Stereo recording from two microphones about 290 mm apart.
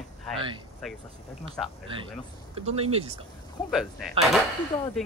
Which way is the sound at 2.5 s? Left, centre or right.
Right.